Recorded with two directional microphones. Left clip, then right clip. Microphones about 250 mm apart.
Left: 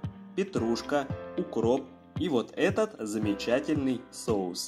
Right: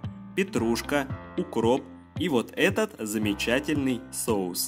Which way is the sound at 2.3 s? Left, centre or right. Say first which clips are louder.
Right 3 dB; right.